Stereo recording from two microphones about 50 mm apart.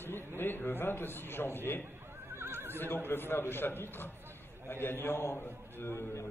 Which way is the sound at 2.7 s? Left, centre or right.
Left.